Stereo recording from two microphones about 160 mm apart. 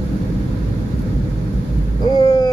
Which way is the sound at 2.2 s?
25° left (ahead or behind).